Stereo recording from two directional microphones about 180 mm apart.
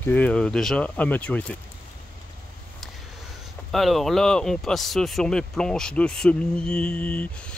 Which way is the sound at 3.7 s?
Centre (ahead or behind).